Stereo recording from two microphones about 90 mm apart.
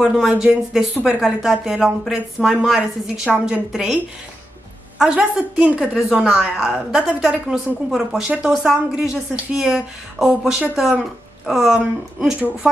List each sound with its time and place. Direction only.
0.0 s a woman's voice: 5° right (ahead or behind)